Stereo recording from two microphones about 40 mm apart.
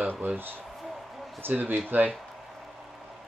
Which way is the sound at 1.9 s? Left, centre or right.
Right.